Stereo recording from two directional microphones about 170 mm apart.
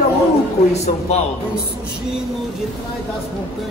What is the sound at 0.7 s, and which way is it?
Speech, 40° left (ahead or behind).